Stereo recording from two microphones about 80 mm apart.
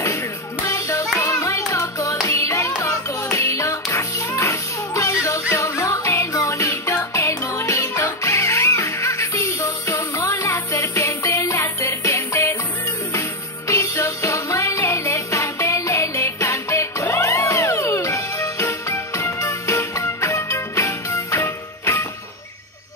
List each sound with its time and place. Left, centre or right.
0.7 s music: left
13.7 s music: left